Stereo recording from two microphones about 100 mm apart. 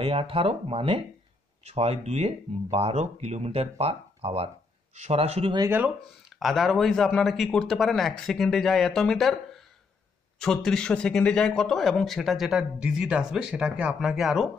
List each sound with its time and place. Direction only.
0.0 s speech: 65° right (ahead or behind)
1.6 s speech: 90° right
6.4 s a man's voice: centre (ahead or behind)